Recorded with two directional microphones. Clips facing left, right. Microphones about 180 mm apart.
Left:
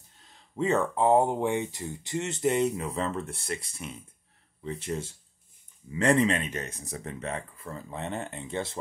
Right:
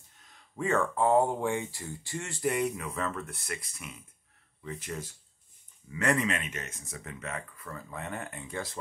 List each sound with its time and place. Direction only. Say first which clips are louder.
0.2 s speech: left 5 dB; 25° left (ahead or behind)